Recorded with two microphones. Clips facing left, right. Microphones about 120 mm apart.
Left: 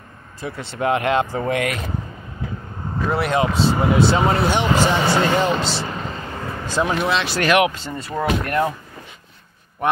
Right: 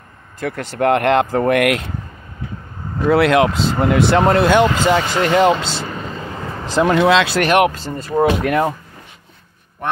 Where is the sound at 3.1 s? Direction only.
90° right.